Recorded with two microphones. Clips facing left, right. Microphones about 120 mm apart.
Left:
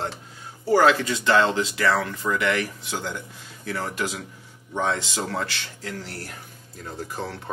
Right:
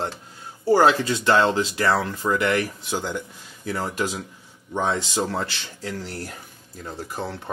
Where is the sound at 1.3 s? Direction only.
30° right (ahead or behind).